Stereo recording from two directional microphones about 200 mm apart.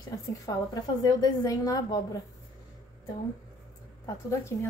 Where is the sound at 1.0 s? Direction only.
20° left (ahead or behind).